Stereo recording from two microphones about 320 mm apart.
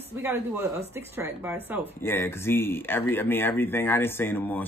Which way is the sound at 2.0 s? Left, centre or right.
Centre.